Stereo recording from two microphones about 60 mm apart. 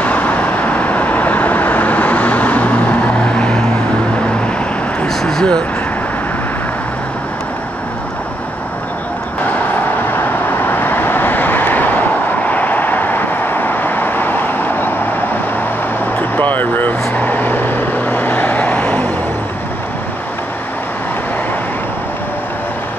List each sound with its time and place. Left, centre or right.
0.0 s vehicle: left
5.0 s vehicle: centre
10.1 s vehicle: left
16.2 s vehicle: left